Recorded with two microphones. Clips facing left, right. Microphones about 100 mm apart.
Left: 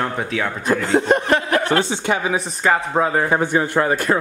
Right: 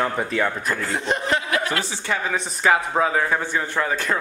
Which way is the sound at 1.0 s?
50° left (ahead or behind).